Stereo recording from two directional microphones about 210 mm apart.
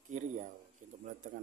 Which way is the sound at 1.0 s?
35° right (ahead or behind).